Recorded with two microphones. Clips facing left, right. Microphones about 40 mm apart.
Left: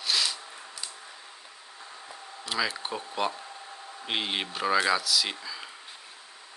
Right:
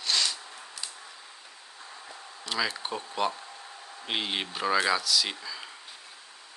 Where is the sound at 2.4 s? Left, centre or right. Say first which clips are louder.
Left 1 dB; centre.